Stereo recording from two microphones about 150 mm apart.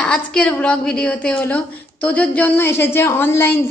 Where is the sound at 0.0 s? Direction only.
5° left (ahead or behind).